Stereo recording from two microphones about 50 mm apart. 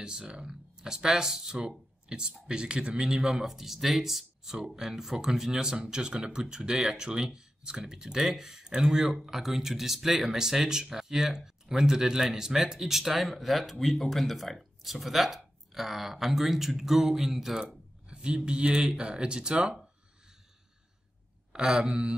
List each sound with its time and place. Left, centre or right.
0.0 s speech: centre
18.0 s speech: centre
21.5 s speech: centre